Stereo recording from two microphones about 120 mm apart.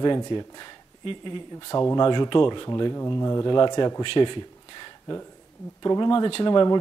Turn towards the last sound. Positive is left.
turn(degrees=35)  # may be behind; listen again after turning